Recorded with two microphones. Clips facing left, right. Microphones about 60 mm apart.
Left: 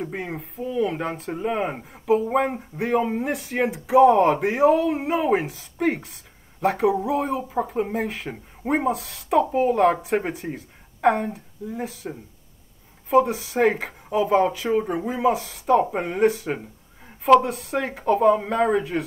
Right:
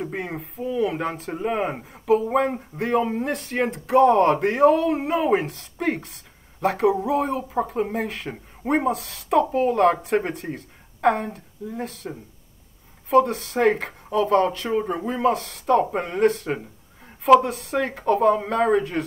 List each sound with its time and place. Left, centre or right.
0.0 s speech: centre
13.1 s speech: centre
14.1 s speech: right
15.1 s speech: centre